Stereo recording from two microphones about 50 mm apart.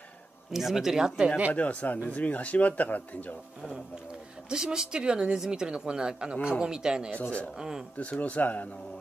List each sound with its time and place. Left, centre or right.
0.5 s speech: centre
1.5 s speech: left
4.5 s speech: centre
7.2 s speech: left
7.5 s speech: centre
8.0 s speech: left